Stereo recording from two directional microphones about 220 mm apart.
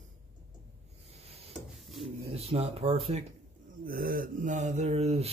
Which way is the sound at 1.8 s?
Centre (ahead or behind).